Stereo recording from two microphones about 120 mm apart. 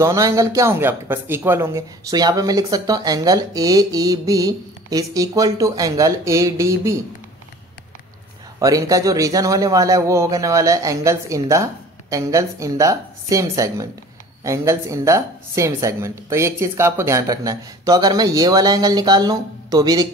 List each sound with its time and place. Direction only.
0.0 s speech: 25° right (ahead or behind)
8.5 s speech: 30° right (ahead or behind)